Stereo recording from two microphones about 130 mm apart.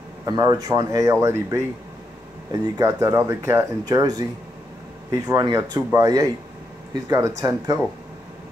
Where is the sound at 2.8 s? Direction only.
20° right (ahead or behind).